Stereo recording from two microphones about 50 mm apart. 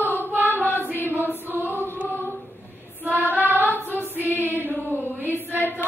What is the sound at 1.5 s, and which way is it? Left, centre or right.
Choir, left.